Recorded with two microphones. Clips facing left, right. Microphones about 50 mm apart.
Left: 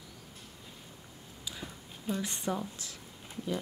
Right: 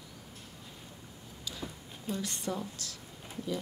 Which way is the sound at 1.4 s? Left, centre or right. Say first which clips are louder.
Right 1 dB; centre.